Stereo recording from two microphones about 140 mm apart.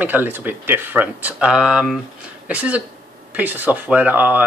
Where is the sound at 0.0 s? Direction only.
15° right (ahead or behind).